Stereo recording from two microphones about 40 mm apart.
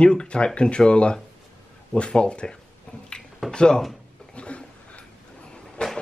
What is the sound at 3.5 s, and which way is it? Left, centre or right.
Speech, centre.